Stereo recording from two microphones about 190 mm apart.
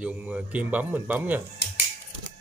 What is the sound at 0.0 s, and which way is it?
Speech, 10° right (ahead or behind).